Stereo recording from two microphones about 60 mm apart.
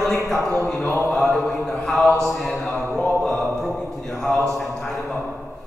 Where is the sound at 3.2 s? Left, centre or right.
Centre.